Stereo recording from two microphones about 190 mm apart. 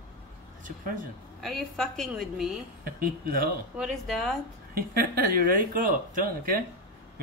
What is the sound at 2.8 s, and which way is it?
Speech, 50° right (ahead or behind).